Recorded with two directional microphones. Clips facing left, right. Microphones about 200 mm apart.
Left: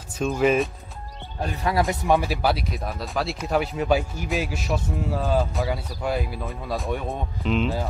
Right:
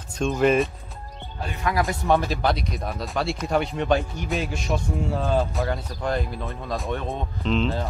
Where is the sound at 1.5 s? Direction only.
35° left (ahead or behind).